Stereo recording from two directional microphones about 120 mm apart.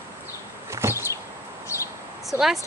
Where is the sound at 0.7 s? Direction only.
20° right (ahead or behind).